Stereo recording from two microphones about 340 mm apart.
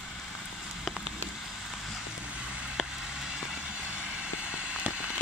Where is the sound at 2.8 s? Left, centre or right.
Centre.